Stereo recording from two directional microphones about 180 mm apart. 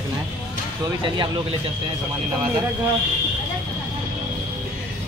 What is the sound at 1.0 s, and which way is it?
Speech, 30° right (ahead or behind).